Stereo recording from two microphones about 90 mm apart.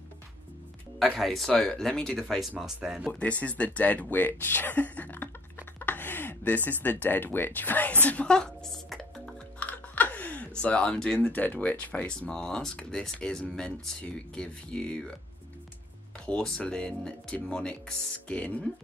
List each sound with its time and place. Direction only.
1.1 s speech: centre (ahead or behind)
3.1 s speech: 15° left (ahead or behind)
5.8 s a sound: 20° left (ahead or behind)
6.8 s a woman's voice: 20° left (ahead or behind); by 9.3 s 5° left (ahead or behind)
9.6 s typing: 20° left (ahead or behind)
11.1 s speech: 20° left (ahead or behind)
16.3 s speech: 10° left (ahead or behind)